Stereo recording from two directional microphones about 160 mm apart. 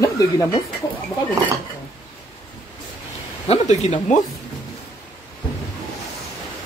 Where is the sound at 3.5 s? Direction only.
45° left (ahead or behind).